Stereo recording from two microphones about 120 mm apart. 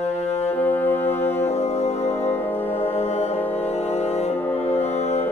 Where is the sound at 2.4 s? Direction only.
15° left (ahead or behind).